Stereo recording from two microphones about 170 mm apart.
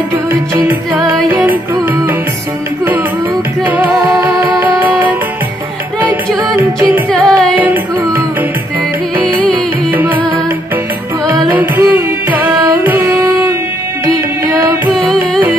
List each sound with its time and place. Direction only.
0.3 s music: 10° right (ahead or behind)
3.6 s music: 10° right (ahead or behind)
4.1 s music: 20° right (ahead or behind)
7.1 s music: 5° left (ahead or behind)
7.5 s music: 10° right (ahead or behind)
9.9 s music: 10° right (ahead or behind)
11.5 s music: 10° right (ahead or behind)